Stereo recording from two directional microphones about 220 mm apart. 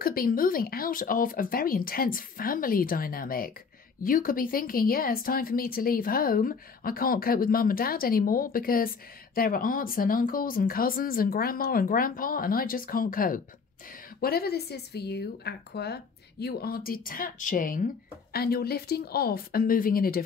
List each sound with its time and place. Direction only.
0.0 s speech: 40° left (ahead or behind)